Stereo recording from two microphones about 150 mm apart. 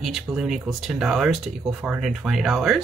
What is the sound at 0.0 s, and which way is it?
Speech, 5° right (ahead or behind).